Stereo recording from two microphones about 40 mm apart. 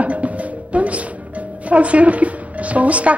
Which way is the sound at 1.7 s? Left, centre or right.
Right.